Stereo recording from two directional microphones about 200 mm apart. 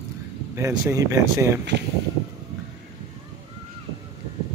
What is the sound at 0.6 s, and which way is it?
Speech, 15° right (ahead or behind).